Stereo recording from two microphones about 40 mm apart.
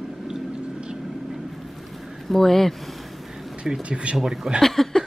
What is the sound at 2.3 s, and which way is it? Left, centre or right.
Speech, centre.